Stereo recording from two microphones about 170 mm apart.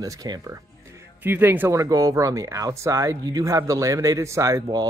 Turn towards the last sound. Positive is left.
turn(degrees=-20)  # may be behind; listen again after turning